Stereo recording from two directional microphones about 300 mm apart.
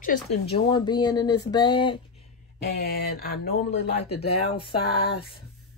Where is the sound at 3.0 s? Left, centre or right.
Left.